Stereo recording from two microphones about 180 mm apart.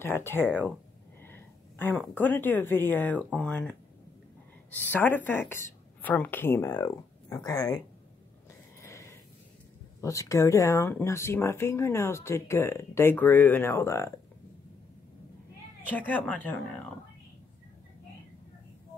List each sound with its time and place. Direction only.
0.0 s a woman's voice: 15° left (ahead or behind)
8.8 s a sound: 15° left (ahead or behind)
9.9 s speech: 15° left (ahead or behind)
15.9 s speech: 10° left (ahead or behind)